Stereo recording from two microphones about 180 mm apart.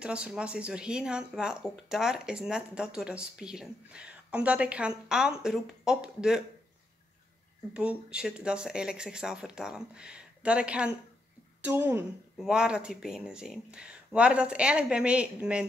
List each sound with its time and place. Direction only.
0.0 s speech: 5° right (ahead or behind)
7.7 s speech: 5° right (ahead or behind)